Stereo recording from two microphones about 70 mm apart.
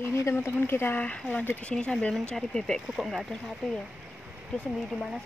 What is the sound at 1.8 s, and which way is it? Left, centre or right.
Speech, centre.